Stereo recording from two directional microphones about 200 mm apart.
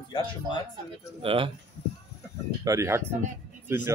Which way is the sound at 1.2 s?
25° right (ahead or behind).